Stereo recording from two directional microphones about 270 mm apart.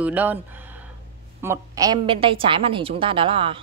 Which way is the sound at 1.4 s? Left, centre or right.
Centre.